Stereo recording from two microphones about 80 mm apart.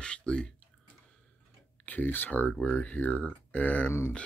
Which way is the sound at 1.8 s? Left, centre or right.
Left.